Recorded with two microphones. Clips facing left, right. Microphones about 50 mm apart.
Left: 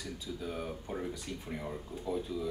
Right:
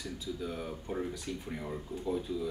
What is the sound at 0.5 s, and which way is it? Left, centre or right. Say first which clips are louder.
Speech: even; centre.